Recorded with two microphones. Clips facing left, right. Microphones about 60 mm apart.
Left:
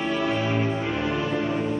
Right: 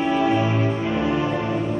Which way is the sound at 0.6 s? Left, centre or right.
Centre.